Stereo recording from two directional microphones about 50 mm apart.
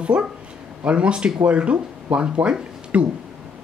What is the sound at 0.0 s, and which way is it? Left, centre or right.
Speech, right.